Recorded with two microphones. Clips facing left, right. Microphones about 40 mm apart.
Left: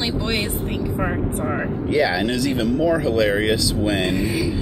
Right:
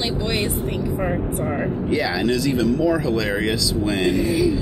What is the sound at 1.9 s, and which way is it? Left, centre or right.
Speech, left.